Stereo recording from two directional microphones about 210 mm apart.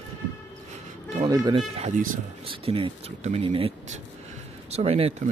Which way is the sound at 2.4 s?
25° right (ahead or behind).